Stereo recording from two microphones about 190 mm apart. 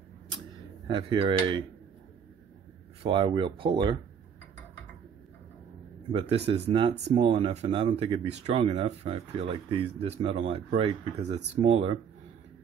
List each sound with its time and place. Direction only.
0.8 s speech: 25° right (ahead or behind)
3.0 s speech: 30° right (ahead or behind)
6.1 s speech: 35° right (ahead or behind)